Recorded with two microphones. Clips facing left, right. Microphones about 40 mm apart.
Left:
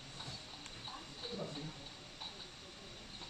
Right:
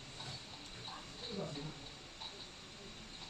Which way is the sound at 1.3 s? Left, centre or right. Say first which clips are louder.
Right 1 dB; centre.